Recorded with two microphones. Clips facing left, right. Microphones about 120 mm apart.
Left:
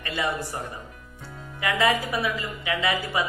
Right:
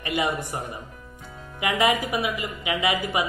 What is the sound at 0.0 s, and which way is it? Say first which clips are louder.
A woman's voice: right 2 dB; 15° right (ahead or behind).